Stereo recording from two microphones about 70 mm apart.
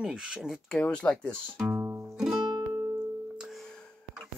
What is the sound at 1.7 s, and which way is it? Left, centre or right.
Music, right.